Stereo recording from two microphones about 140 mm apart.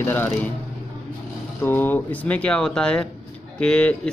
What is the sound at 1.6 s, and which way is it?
Speech, 15° left (ahead or behind).